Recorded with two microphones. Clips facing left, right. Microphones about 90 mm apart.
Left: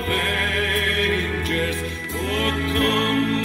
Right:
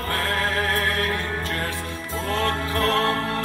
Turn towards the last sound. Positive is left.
turn(degrees=-35)  # may be behind; listen again after turning